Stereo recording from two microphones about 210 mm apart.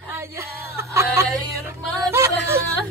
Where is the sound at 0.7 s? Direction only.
15° right (ahead or behind).